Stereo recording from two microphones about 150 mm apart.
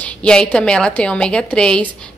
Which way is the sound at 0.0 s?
5° left (ahead or behind).